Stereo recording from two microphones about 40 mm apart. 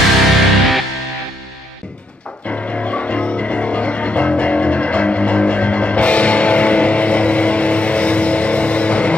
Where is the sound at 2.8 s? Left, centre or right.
Left.